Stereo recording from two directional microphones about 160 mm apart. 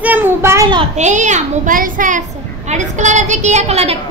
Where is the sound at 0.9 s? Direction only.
45° right (ahead or behind).